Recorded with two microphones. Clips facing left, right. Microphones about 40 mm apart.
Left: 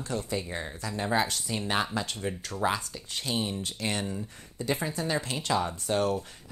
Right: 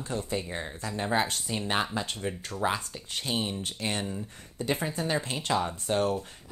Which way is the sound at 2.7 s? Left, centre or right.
Right.